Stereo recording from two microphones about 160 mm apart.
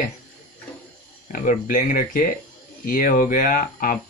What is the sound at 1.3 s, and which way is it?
Speech, 55° left (ahead or behind).